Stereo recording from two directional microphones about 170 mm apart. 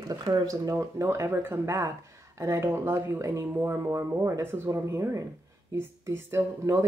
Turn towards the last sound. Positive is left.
turn(degrees=-15)  # may be behind; listen again after turning